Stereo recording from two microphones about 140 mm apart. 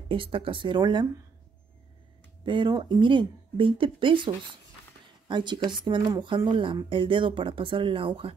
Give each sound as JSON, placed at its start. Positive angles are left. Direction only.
{"t": 0.1, "sound": "speech", "side_deg": -40}
{"t": 2.4, "sound": "speech", "side_deg": -35}